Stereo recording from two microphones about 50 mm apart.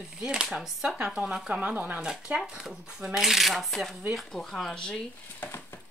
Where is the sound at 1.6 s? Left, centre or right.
Right.